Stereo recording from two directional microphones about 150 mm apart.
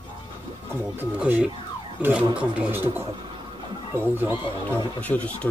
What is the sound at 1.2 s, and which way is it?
Speech, 5° right (ahead or behind).